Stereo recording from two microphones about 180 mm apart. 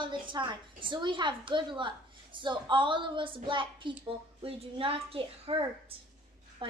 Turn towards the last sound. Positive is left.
turn(degrees=-30)  # may be behind; listen again after turning